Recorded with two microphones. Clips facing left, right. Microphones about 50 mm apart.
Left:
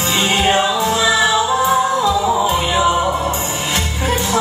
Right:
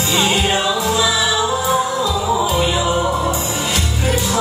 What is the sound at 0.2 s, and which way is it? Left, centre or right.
Music, left.